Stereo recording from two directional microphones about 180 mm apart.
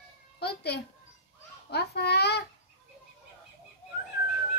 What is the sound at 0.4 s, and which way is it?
A child's voice, 65° left (ahead or behind).